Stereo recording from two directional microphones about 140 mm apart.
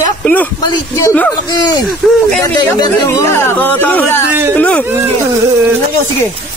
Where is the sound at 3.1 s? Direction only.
20° left (ahead or behind).